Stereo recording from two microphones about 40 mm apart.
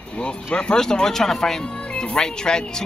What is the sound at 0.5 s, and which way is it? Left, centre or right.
Speech, left.